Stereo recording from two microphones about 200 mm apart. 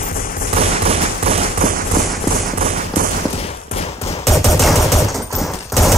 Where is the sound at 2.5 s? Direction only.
45° right (ahead or behind).